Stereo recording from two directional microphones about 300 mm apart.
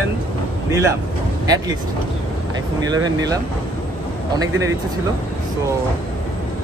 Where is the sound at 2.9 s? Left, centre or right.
Centre.